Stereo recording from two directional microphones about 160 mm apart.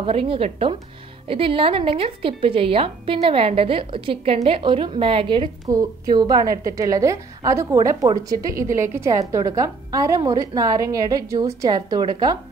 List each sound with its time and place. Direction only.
0.0 s a woman's voice: 35° right (ahead or behind)